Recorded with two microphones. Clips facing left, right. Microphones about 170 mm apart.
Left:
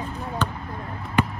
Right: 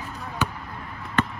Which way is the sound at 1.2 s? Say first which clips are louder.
Left 2 dB; 10° left (ahead or behind).